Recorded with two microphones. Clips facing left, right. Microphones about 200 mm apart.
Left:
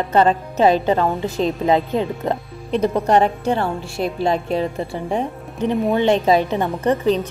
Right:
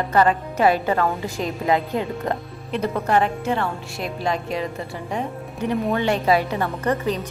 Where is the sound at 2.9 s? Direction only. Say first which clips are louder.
Left 3 dB; 35° left (ahead or behind).